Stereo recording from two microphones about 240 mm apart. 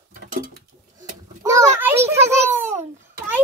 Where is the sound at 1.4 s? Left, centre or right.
Centre.